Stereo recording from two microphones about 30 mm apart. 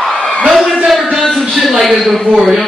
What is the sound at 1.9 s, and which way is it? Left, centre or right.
Speech, centre.